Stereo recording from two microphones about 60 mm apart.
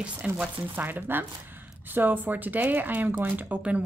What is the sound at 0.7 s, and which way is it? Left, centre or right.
A woman's voice, right.